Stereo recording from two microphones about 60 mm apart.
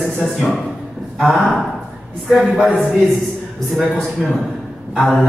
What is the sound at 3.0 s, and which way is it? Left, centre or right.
A man's voice, centre.